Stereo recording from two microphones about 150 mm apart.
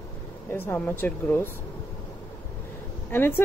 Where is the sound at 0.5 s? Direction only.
10° left (ahead or behind).